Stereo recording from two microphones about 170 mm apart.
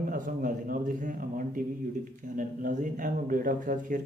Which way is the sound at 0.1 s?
50° right (ahead or behind).